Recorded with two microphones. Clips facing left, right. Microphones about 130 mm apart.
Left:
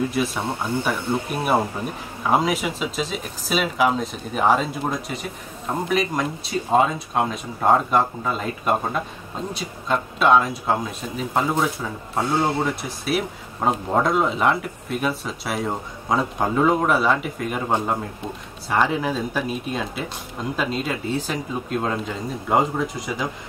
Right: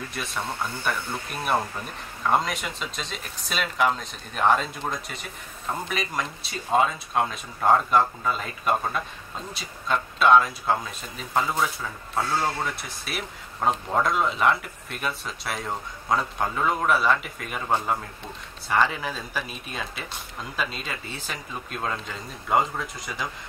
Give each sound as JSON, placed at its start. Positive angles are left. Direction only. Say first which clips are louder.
{"t": 0.1, "sound": "speech", "louder": "left 10 dB", "side_deg": 5}
{"t": 0.4, "sound": "speech", "louder": "left 6 dB", "side_deg": 15}
{"t": 8.7, "sound": "speech", "louder": "left 3 dB", "side_deg": 15}
{"t": 9.5, "sound": "speech", "louder": "left 3 dB", "side_deg": 0}
{"t": 12.6, "sound": "speech", "louder": "left 8 dB", "side_deg": 0}
{"t": 18.7, "sound": "speech", "louder": "left 3 dB", "side_deg": 5}